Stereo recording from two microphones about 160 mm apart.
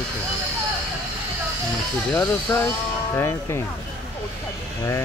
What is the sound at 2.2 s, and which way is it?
Speech, 20° left (ahead or behind).